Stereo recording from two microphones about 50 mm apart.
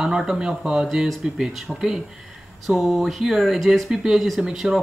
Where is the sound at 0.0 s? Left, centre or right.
Centre.